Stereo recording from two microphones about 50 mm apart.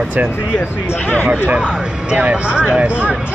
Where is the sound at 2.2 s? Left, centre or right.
Right.